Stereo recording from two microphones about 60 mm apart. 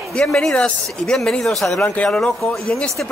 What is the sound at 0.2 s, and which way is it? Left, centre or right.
Speech, centre.